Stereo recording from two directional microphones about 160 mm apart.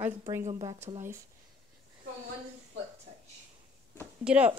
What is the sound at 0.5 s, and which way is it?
Speech, 30° right (ahead or behind).